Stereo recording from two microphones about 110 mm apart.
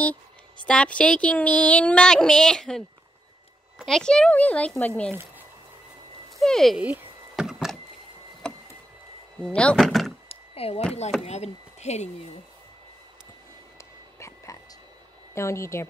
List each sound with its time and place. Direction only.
0.7 s speech: 10° left (ahead or behind)
3.8 s speech: 5° left (ahead or behind)
6.3 s speech: 5° left (ahead or behind)
6.8 s a sound: 15° right (ahead or behind)
9.6 s speech: 5° left (ahead or behind)
10.2 s a sound: 65° left (ahead or behind)
11.2 s speech: 90° left
13.7 s a sound: 25° left (ahead or behind)
15.3 s speech: 25° left (ahead or behind)